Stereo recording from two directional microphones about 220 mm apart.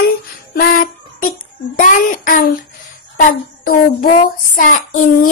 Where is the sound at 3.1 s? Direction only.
40° left (ahead or behind).